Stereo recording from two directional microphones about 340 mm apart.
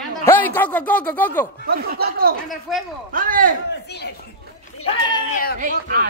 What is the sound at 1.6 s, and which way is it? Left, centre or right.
Speech, right.